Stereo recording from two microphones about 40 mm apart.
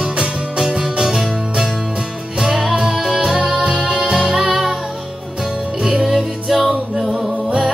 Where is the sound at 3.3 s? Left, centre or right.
Centre.